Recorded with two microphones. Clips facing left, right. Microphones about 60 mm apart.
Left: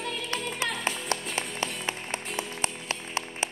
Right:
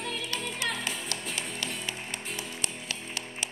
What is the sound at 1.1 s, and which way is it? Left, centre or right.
Music, left.